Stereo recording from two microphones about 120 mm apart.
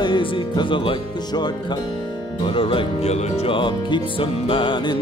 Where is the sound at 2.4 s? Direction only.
50° left (ahead or behind).